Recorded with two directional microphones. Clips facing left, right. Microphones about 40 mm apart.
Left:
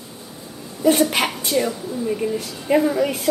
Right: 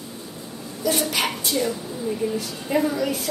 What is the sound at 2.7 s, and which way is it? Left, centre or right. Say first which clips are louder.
Speech: left 5 dB; left.